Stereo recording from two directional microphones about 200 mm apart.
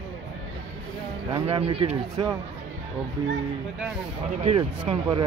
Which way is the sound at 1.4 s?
30° right (ahead or behind).